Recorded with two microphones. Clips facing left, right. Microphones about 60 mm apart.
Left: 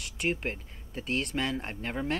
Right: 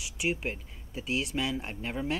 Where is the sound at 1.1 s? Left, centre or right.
Left.